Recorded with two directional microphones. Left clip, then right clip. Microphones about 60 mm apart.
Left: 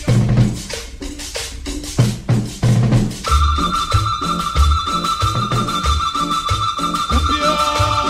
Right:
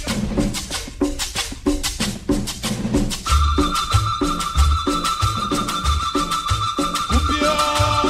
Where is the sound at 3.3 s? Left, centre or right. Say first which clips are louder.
Left 3 dB; left.